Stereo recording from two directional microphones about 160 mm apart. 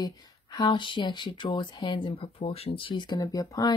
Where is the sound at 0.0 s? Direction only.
25° left (ahead or behind).